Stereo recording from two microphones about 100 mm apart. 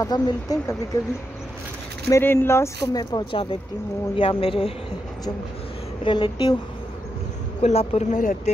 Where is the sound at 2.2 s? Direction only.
25° left (ahead or behind).